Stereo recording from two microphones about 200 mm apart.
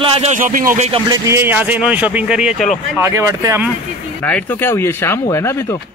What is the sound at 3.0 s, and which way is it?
Speech, 15° right (ahead or behind).